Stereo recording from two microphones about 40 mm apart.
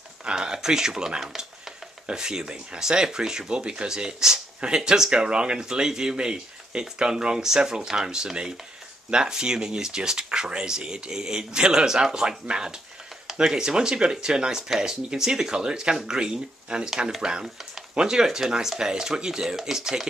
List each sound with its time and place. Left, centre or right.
0.2 s speech: centre